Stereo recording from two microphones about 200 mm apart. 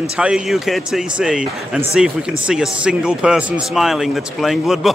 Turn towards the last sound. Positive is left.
turn(degrees=0)  # may be behind; listen again after turning